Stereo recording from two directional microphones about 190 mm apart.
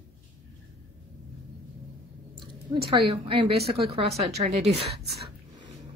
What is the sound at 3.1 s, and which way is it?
A woman's voice, 30° right (ahead or behind).